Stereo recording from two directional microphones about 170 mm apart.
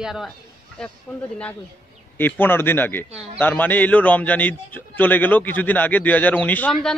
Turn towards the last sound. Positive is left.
turn(degrees=5)  # may be behind; listen again after turning